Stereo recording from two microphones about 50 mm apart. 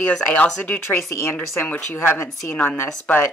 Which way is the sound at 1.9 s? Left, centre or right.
Left.